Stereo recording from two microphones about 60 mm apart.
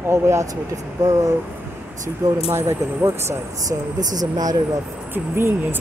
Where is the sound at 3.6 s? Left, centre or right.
Right.